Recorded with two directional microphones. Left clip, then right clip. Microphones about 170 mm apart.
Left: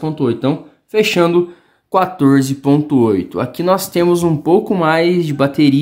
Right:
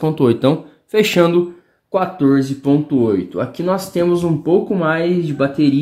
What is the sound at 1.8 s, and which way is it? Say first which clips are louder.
Speech: left 3 dB; 40° left (ahead or behind).